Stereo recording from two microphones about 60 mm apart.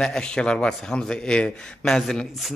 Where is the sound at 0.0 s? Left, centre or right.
Centre.